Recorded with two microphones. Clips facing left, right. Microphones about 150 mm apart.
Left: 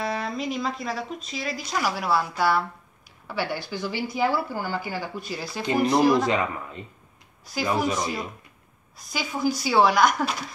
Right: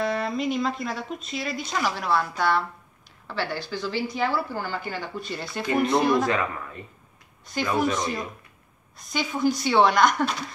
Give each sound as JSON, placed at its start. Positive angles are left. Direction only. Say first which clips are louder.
{"t": 0.0, "sound": "speech", "louder": "right 3 dB", "side_deg": 0}
{"t": 6.2, "sound": "speech", "louder": "left 1 dB", "side_deg": 20}
{"t": 7.5, "sound": "speech", "louder": "right 1 dB", "side_deg": 5}